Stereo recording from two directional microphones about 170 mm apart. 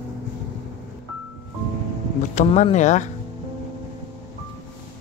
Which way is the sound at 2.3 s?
45° left (ahead or behind).